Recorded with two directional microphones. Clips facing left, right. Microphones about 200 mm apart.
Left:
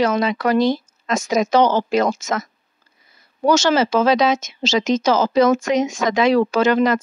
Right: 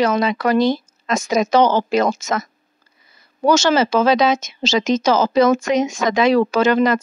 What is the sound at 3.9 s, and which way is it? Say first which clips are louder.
Speech: right 1 dB; 55° right (ahead or behind).